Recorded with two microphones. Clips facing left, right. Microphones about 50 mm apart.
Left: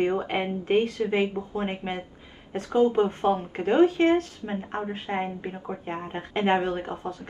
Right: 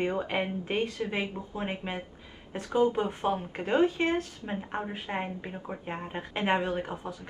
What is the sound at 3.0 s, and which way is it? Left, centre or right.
Speech, centre.